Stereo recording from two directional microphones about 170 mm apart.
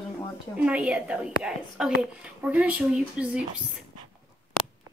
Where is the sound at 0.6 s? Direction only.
5° right (ahead or behind).